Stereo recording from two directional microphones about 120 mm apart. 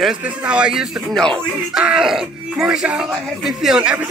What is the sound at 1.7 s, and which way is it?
Speech, 5° right (ahead or behind).